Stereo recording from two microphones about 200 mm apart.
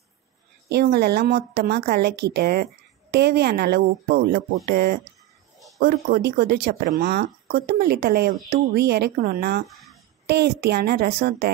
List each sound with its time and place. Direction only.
0.7 s a woman's voice: 55° right (ahead or behind)
9.7 s a sound: centre (ahead or behind)
10.2 s a woman's voice: 55° right (ahead or behind)